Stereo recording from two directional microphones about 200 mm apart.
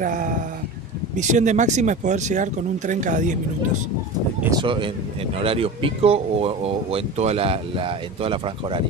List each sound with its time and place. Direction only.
0.0 s a sound: 40° right (ahead or behind)
1.1 s speech: 40° right (ahead or behind)
4.4 s speech: 20° right (ahead or behind)